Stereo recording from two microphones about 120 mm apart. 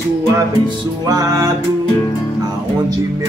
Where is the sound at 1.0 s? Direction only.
30° right (ahead or behind).